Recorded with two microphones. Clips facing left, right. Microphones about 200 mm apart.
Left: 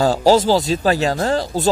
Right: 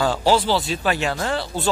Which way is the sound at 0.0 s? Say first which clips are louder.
Left 5 dB; 40° left (ahead or behind).